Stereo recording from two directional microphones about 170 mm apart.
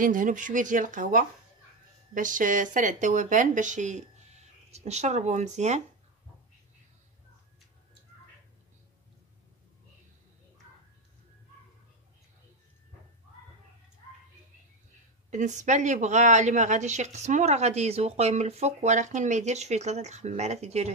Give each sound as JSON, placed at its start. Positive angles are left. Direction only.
{"t": 0.0, "sound": "speech", "side_deg": -50}
{"t": 15.3, "sound": "speech", "side_deg": -45}